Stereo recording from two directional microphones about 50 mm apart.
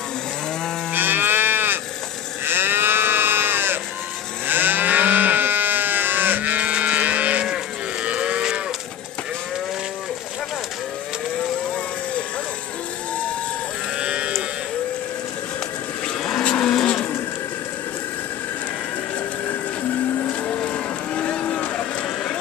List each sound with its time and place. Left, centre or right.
0.9 s livestock: right
8.0 s moo: right
13.9 s sheep: right
16.5 s cattle: centre
20.2 s vehicle: left